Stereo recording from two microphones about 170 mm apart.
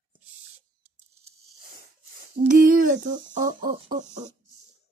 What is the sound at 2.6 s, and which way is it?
Speech, 50° right (ahead or behind).